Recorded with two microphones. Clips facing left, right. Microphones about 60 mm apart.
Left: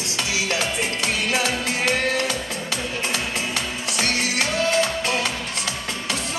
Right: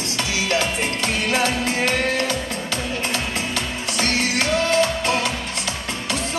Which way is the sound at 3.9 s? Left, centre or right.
Right.